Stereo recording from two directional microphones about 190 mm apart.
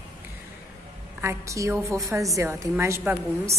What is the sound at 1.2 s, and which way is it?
A woman's voice, 15° right (ahead or behind).